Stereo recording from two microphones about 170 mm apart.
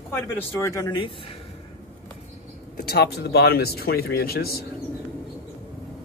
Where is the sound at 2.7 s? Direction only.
70° left (ahead or behind).